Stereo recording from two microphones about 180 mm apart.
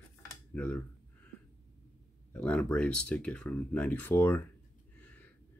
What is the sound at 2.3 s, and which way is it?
Speech, 5° left (ahead or behind).